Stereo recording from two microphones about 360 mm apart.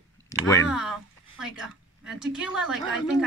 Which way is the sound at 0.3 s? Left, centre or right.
Centre.